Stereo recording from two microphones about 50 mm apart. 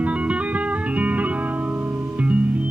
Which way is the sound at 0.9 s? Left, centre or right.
Right.